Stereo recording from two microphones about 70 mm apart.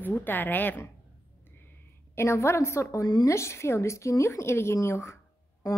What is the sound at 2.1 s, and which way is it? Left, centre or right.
Speech, left.